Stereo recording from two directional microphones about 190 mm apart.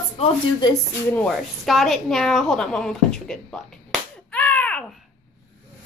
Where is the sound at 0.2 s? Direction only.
20° left (ahead or behind).